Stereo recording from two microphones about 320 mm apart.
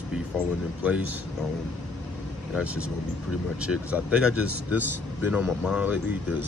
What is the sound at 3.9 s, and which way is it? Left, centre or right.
Speech, centre.